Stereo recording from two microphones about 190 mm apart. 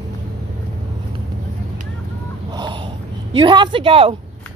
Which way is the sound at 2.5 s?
25° right (ahead or behind).